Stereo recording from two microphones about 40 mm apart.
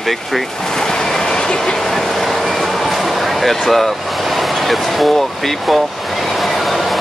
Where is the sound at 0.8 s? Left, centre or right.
Centre.